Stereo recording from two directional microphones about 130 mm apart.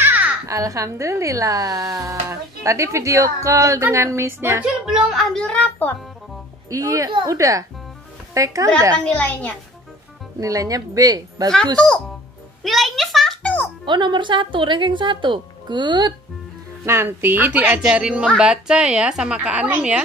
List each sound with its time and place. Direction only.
0.0 s a child's voice: 15° right (ahead or behind); by 5.9 s 10° left (ahead or behind)
6.7 s a child's voice: 25° right (ahead or behind)
9.0 s a woman's voice: 10° left (ahead or behind)
10.4 s a child's voice: 25° right (ahead or behind)
11.5 s a woman's voice: 5° left (ahead or behind)
12.6 s music: centre (ahead or behind)
13.8 s speech: 35° right (ahead or behind)
16.8 s speech: 20° right (ahead or behind)